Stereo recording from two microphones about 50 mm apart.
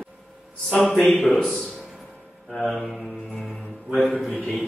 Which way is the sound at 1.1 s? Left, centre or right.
Centre.